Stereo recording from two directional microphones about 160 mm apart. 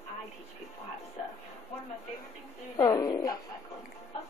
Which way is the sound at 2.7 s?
20° left (ahead or behind).